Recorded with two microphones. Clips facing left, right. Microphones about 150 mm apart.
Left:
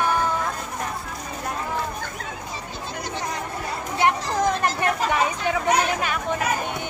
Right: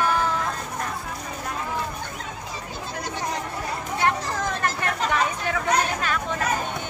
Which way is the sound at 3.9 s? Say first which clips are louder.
Left 3 dB; 15° left (ahead or behind).